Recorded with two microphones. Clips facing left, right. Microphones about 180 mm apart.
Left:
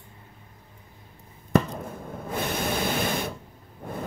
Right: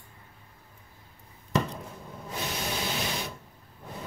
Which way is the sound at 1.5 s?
50° left (ahead or behind).